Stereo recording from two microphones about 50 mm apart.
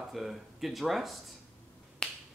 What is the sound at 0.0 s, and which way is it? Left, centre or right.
Speech, centre.